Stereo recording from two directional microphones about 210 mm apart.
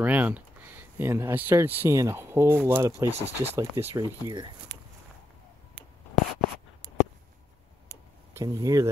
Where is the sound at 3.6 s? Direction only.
15° right (ahead or behind).